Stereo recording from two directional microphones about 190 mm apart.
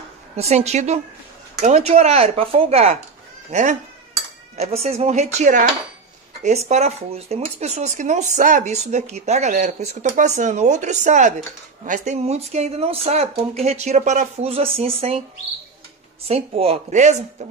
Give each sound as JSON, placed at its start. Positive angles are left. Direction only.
{"t": 0.4, "sound": "speech", "side_deg": -35}
{"t": 6.7, "sound": "speech", "side_deg": -35}
{"t": 16.3, "sound": "speech", "side_deg": -30}